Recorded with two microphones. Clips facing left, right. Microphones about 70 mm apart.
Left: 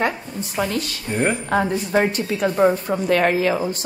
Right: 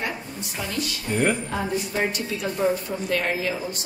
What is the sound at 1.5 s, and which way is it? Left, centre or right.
A woman's voice, left.